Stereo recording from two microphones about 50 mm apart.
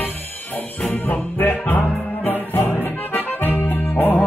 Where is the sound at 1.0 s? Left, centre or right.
Left.